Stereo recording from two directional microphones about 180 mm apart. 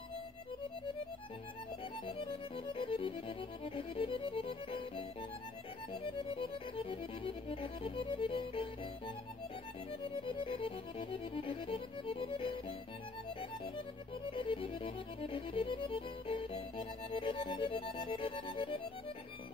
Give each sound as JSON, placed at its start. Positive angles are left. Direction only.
{"t": 2.0, "sound": "music", "side_deg": 30}
{"t": 6.0, "sound": "music", "side_deg": 30}
{"t": 10.2, "sound": "music", "side_deg": 30}
{"t": 14.3, "sound": "music", "side_deg": 30}